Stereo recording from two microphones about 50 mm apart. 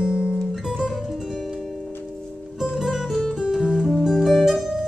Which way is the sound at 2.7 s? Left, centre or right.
Centre.